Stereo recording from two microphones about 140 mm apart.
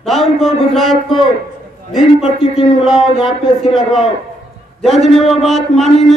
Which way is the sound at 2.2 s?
45° left (ahead or behind).